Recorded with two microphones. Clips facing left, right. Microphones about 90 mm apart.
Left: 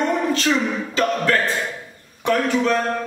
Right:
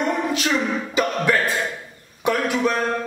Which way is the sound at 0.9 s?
15° right (ahead or behind).